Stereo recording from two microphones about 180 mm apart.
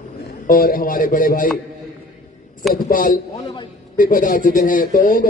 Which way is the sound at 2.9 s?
50° left (ahead or behind).